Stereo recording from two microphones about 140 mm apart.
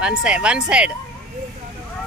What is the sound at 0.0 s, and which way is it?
Speech, 10° right (ahead or behind).